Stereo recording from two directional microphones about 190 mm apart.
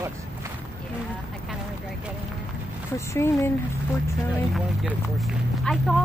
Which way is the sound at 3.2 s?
15° left (ahead or behind).